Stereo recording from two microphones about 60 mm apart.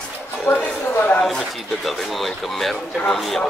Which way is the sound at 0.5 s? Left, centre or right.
Left.